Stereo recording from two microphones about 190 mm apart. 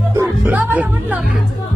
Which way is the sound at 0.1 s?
10° right (ahead or behind).